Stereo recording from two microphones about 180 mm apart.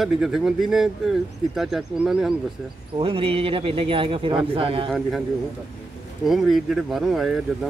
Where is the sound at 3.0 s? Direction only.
30° right (ahead or behind).